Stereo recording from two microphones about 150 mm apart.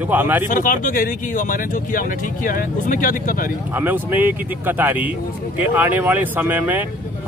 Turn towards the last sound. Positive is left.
turn(degrees=-10)  # may be behind; listen again after turning